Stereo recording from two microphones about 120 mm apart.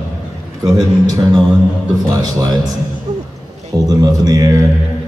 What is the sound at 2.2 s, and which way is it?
Speech, 35° right (ahead or behind).